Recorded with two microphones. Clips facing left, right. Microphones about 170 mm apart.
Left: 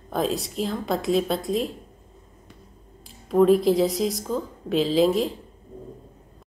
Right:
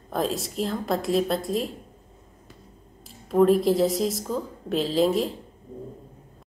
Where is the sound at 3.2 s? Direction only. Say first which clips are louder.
Left 1 dB; centre (ahead or behind).